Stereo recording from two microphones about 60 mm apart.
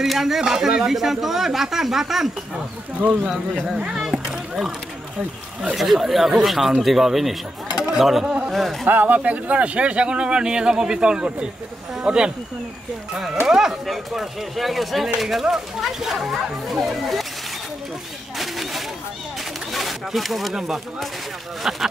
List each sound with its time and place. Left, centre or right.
0.0 s speech: centre
3.8 s speech: centre
5.8 s speech: centre
8.8 s speech: right; by 17.3 s centre
18.4 s a sound: centre
19.7 s speech: centre